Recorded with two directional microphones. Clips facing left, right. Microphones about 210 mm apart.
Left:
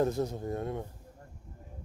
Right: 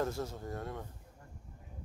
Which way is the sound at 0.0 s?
20° left (ahead or behind).